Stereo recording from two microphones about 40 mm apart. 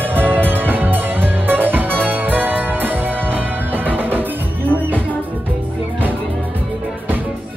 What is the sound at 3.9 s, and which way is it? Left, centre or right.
Music, right.